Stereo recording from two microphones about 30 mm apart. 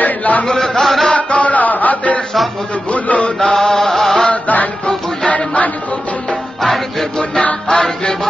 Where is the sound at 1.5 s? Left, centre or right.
Left.